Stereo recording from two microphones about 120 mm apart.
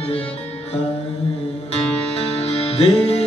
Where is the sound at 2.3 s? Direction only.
55° left (ahead or behind).